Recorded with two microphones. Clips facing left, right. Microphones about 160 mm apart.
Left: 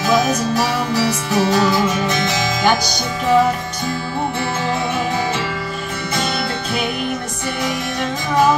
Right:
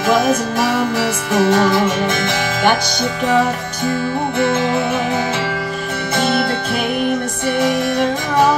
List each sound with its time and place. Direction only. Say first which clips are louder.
0.2 s music: right 2 dB; 50° right (ahead or behind)